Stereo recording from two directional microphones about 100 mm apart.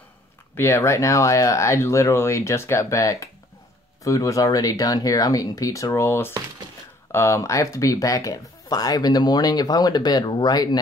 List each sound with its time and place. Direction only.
0.6 s speech: 25° left (ahead or behind); by 10.8 s 40° left (ahead or behind)